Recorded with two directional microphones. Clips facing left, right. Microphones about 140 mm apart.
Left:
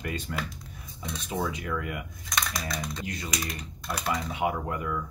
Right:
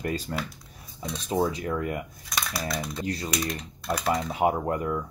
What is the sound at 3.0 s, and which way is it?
Speech, 35° right (ahead or behind).